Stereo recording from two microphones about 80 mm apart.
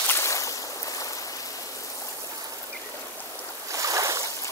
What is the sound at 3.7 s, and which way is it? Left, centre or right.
Boat, right.